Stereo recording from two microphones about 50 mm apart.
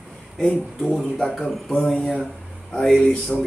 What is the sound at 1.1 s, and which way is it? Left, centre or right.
Speech, centre.